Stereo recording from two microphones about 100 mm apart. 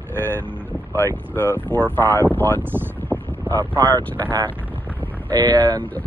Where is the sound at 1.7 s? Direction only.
10° left (ahead or behind).